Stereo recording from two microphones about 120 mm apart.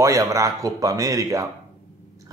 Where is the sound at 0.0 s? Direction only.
25° right (ahead or behind).